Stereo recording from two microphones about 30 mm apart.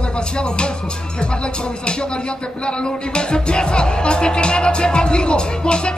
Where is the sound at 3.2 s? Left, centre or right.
Left.